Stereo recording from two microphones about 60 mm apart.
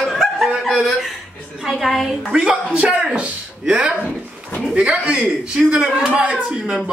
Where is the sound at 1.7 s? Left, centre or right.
Centre.